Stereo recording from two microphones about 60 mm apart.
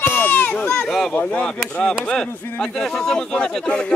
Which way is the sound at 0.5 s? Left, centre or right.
Centre.